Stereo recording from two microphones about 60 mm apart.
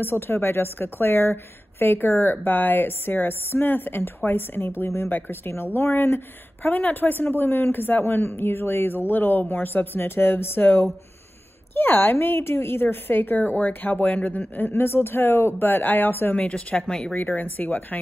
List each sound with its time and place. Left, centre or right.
0.0 s a woman's voice: left
14.7 s a woman's voice: left
16.3 s speech: left
17.1 s speech: left